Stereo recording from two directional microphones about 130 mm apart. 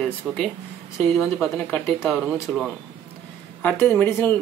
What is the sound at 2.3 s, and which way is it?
Speech, centre (ahead or behind).